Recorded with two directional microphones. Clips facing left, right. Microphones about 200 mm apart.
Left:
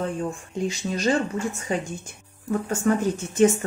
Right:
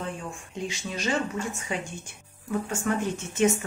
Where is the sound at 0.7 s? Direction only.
35° left (ahead or behind).